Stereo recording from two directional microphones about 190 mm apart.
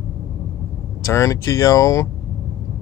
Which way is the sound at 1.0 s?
15° left (ahead or behind).